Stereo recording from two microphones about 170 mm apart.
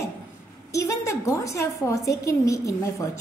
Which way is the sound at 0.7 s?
20° left (ahead or behind).